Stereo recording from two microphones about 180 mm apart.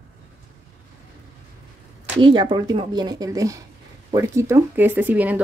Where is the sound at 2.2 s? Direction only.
25° right (ahead or behind).